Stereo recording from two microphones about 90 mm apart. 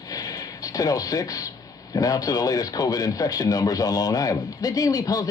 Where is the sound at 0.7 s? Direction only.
40° left (ahead or behind).